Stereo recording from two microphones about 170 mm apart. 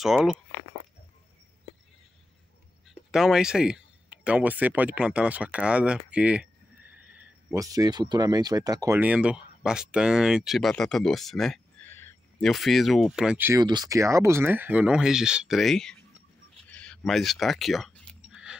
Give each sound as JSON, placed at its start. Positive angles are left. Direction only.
{"t": 0.0, "sound": "speech", "side_deg": 0}
{"t": 2.9, "sound": "speech", "side_deg": -5}
{"t": 7.5, "sound": "speech", "side_deg": -20}
{"t": 9.0, "sound": "speech", "side_deg": -5}
{"t": 11.9, "sound": "a sound", "side_deg": 15}
{"t": 12.4, "sound": "speech", "side_deg": 0}
{"t": 13.6, "sound": "speech", "side_deg": -25}
{"t": 16.7, "sound": "a sound", "side_deg": 5}